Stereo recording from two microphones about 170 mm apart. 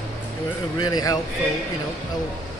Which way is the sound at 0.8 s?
20° left (ahead or behind).